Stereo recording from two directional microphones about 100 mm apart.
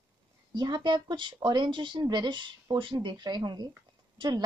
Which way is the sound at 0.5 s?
45° right (ahead or behind).